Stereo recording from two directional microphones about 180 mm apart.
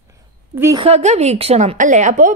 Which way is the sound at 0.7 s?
35° right (ahead or behind).